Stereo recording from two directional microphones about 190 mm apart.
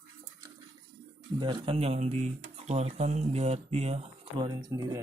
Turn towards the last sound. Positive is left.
turn(degrees=-20)  # may be behind; listen again after turning